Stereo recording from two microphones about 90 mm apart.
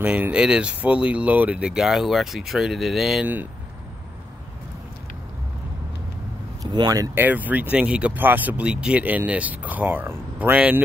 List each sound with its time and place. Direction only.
0.0 s speech: 15° right (ahead or behind)
6.6 s speech: 50° right (ahead or behind)
7.2 s speech: 20° right (ahead or behind)